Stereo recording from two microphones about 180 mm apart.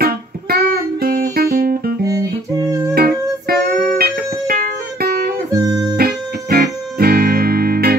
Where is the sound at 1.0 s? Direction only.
55° right (ahead or behind).